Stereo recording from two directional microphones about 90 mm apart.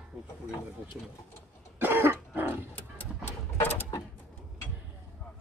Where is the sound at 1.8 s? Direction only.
25° right (ahead or behind).